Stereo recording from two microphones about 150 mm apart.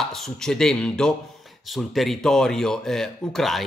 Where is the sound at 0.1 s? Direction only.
5° left (ahead or behind).